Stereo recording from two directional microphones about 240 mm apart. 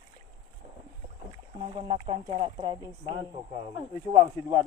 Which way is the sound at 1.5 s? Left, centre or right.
Right.